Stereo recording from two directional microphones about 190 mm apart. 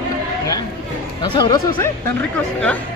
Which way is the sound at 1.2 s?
25° left (ahead or behind).